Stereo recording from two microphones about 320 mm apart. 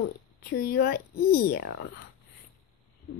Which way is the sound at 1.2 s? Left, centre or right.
Left.